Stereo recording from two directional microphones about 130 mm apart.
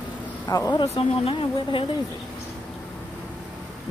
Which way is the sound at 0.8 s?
50° left (ahead or behind).